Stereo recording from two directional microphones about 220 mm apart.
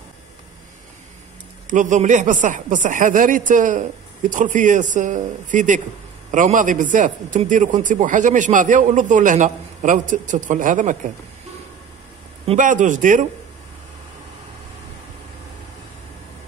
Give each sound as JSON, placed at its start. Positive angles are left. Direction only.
{"t": 1.7, "sound": "a man's voice", "side_deg": -35}
{"t": 12.4, "sound": "a man's voice", "side_deg": -35}